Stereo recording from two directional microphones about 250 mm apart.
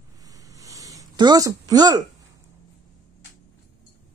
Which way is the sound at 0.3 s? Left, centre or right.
Centre.